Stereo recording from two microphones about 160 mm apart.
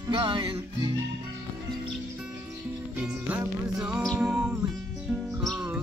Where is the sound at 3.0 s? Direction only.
10° right (ahead or behind).